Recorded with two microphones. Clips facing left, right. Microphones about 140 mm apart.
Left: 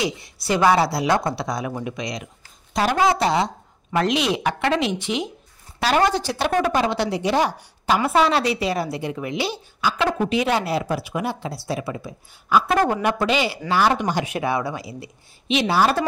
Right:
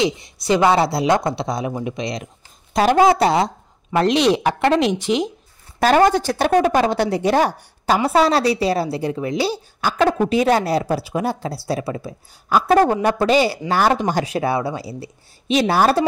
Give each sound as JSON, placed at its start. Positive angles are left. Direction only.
{"t": 0.0, "sound": "speech", "side_deg": -20}
{"t": 2.7, "sound": "speech", "side_deg": -50}
{"t": 3.9, "sound": "speech", "side_deg": -30}
{"t": 9.8, "sound": "a woman's voice", "side_deg": -50}
{"t": 10.1, "sound": "speech", "side_deg": -40}